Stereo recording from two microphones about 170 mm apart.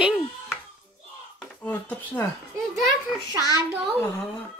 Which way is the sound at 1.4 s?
10° left (ahead or behind).